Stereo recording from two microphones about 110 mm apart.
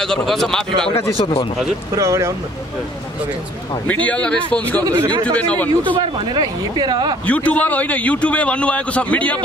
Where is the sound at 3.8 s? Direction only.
15° left (ahead or behind).